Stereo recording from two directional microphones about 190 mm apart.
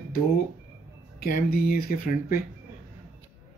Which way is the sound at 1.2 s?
55° left (ahead or behind).